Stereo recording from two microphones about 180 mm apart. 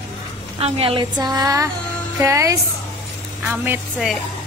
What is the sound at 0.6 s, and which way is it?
A woman's voice, 30° right (ahead or behind).